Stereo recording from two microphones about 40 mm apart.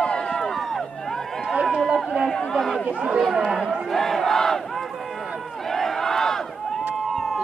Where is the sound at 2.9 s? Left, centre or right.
Right.